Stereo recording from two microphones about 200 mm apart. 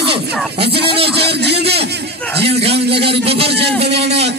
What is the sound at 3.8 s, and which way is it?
Speech, 55° right (ahead or behind).